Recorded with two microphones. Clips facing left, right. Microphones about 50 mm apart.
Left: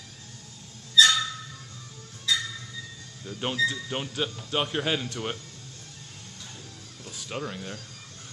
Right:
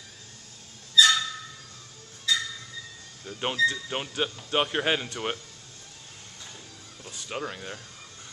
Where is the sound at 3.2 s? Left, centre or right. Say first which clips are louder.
Right 2 dB; centre.